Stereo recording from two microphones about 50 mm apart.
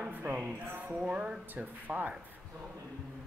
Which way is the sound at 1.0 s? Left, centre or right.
Right.